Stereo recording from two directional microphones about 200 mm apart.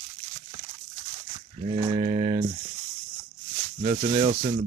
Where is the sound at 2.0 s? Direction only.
35° right (ahead or behind).